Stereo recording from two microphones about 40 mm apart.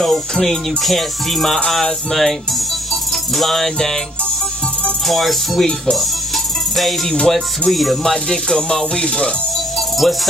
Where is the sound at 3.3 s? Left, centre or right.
Centre.